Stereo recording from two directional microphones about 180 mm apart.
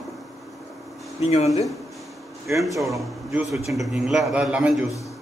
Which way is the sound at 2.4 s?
Centre (ahead or behind).